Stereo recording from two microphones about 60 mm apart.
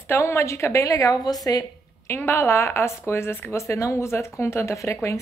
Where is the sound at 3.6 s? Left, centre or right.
Left.